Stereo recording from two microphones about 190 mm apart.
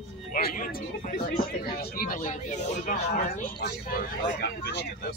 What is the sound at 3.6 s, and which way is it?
Speech, 55° left (ahead or behind).